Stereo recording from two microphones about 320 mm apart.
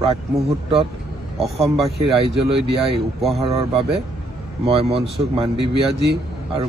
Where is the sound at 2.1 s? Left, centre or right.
Centre.